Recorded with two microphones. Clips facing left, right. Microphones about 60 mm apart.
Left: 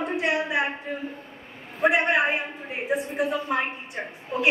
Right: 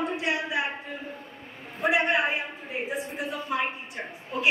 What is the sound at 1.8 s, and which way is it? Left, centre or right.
A woman's voice, left.